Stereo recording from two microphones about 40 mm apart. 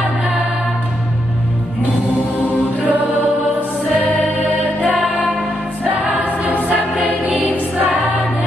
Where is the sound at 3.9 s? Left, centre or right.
Left.